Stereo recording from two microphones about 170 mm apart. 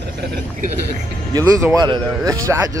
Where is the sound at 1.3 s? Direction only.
20° right (ahead or behind).